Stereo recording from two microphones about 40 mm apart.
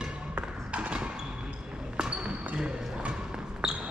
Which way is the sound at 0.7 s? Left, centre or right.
Right.